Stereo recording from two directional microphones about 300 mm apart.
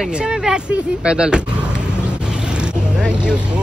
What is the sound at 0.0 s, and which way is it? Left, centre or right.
A man's voice, centre.